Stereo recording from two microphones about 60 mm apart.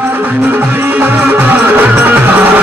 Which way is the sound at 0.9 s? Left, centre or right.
Right.